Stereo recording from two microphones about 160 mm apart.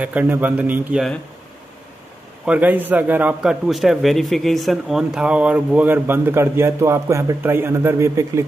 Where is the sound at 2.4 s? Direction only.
10° right (ahead or behind).